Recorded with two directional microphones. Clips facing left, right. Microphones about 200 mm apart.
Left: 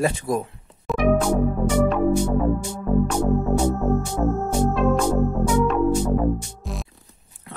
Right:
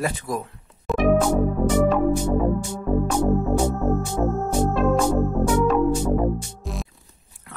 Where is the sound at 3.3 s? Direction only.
Centre (ahead or behind).